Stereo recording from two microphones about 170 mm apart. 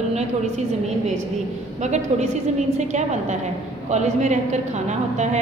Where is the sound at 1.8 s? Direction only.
40° right (ahead or behind).